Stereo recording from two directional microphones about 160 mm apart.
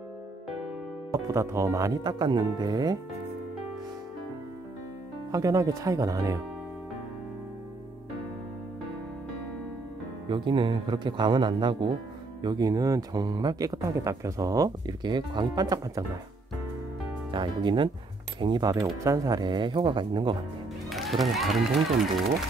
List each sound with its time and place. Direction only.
1.1 s speech: 20° right (ahead or behind)
5.3 s speech: 20° right (ahead or behind)
10.2 s speech: 30° right (ahead or behind)
17.3 s speech: 30° right (ahead or behind)
20.9 s speech: centre (ahead or behind)